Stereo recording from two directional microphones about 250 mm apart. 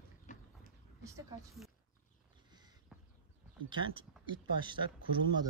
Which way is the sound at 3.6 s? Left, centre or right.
Centre.